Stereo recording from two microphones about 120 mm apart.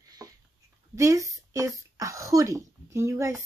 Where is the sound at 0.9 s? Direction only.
25° right (ahead or behind).